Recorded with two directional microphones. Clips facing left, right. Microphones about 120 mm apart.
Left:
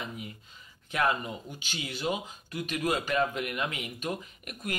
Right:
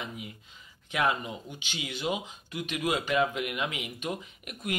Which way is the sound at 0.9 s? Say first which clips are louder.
Even; 10° right (ahead or behind).